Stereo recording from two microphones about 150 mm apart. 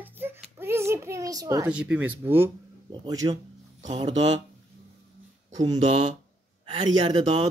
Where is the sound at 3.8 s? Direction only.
50° right (ahead or behind).